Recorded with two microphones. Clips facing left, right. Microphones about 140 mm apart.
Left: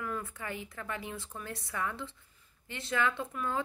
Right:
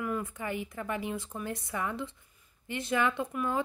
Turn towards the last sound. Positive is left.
turn(degrees=-15)  # may be behind; listen again after turning